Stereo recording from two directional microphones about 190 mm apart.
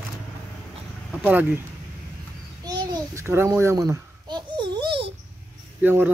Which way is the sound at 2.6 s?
20° right (ahead or behind).